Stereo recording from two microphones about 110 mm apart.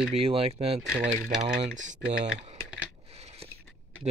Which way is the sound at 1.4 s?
90° right.